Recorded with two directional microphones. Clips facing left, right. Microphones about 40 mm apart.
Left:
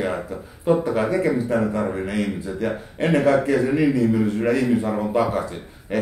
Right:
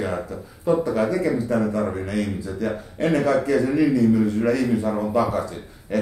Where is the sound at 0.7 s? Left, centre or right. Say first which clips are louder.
Left 1 dB; left.